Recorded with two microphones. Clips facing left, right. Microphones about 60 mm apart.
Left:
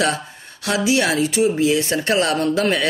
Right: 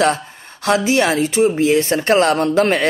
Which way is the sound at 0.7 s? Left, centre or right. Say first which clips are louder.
Right 3 dB; right.